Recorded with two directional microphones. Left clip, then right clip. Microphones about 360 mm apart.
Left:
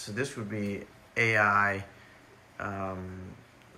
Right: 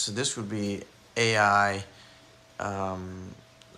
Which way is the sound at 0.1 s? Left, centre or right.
Centre.